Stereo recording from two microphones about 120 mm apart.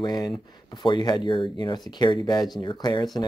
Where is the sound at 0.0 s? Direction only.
35° left (ahead or behind).